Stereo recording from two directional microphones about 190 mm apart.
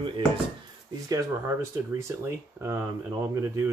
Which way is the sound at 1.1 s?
15° right (ahead or behind).